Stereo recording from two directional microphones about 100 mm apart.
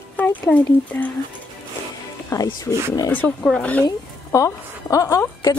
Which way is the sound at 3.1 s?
20° left (ahead or behind).